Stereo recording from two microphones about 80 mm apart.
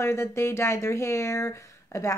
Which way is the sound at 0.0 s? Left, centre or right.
Left.